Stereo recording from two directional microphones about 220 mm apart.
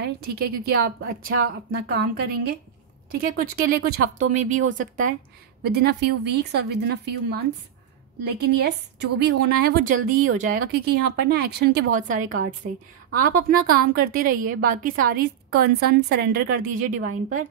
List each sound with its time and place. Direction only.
0.0 s a woman's voice: 45° right (ahead or behind)
5.7 s a woman's voice: 50° right (ahead or behind)